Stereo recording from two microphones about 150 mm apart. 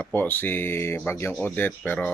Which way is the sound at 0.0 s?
10° left (ahead or behind).